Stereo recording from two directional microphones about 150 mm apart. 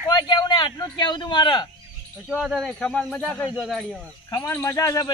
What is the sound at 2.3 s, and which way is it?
Speech, 5° left (ahead or behind).